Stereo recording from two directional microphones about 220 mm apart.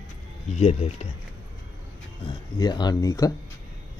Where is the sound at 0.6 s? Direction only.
30° left (ahead or behind).